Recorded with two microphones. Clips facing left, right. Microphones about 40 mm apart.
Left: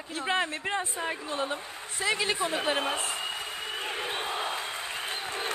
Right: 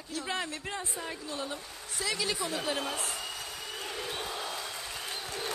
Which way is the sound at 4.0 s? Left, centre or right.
Left.